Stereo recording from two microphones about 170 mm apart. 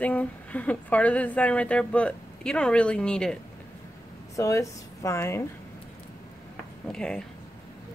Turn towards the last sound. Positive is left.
turn(degrees=5)  # may be behind; listen again after turning